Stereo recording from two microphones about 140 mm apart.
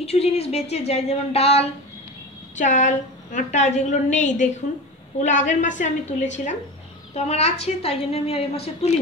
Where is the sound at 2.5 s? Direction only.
60° left (ahead or behind).